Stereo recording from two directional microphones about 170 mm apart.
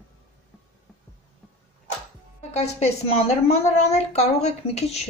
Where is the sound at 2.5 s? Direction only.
40° left (ahead or behind).